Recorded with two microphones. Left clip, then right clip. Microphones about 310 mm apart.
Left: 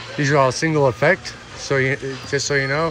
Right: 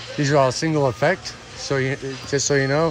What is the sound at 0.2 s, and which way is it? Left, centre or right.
Speech, centre.